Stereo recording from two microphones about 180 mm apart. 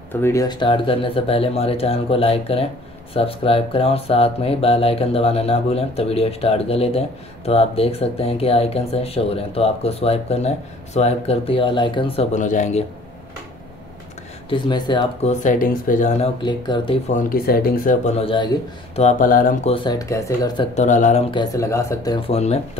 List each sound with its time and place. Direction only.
0.1 s speech: 15° left (ahead or behind); by 12.8 s 40° left (ahead or behind)
14.5 s speech: 25° left (ahead or behind)
15.2 s speech: 45° left (ahead or behind)
16.4 s speech: 25° left (ahead or behind)
17.1 s speech: 55° left (ahead or behind)
18.2 s speech: 25° left (ahead or behind)
19.0 s speech: 50° left (ahead or behind)
19.7 s speech: 25° left (ahead or behind)
20.7 s speech: 40° left (ahead or behind)
21.3 s speech: 20° left (ahead or behind)
22.3 s speech: 35° left (ahead or behind)